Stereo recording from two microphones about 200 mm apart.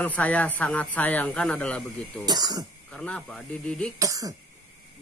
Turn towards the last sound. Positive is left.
turn(degrees=-15)  # may be behind; listen again after turning